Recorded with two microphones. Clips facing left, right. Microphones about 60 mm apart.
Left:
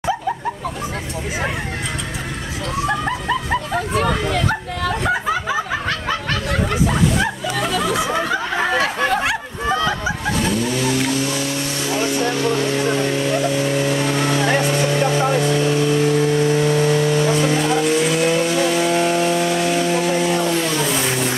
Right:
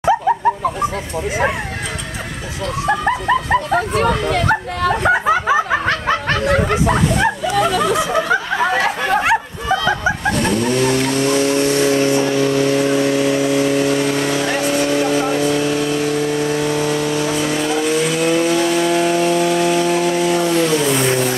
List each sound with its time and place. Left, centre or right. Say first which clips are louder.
3.1 s dog: right 5 dB; centre
4.2 s speech: right 4 dB; centre
5.2 s snicker: right 6 dB; centre
8.7 s speech: right 1 dB; centre
10.2 s vehicle: right 2 dB; centre
11.8 s vehicle: right 6 dB; right
12.2 s vehicle: right 3 dB; centre